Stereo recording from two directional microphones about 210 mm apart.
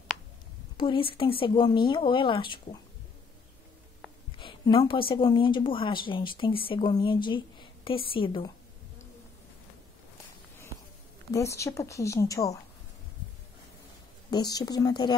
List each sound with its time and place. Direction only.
0.7 s speech: 25° left (ahead or behind)
4.4 s speech: 25° left (ahead or behind)
11.3 s a woman's voice: 15° left (ahead or behind)
14.3 s speech: 20° left (ahead or behind)